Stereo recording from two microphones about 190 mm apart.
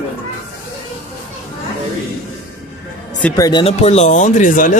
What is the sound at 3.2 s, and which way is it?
Speech, 20° left (ahead or behind).